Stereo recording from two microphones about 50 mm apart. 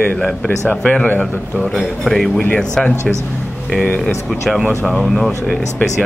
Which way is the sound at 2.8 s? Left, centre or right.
Centre.